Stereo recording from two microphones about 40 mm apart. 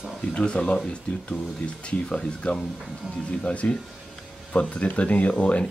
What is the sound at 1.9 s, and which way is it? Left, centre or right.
Speech, left.